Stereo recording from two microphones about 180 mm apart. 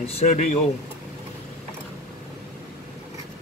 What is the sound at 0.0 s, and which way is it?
Speech, 35° left (ahead or behind).